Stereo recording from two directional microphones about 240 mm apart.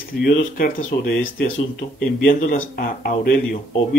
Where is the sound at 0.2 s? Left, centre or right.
Left.